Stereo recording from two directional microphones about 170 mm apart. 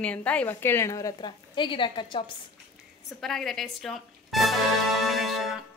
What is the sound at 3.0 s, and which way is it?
Music, centre (ahead or behind).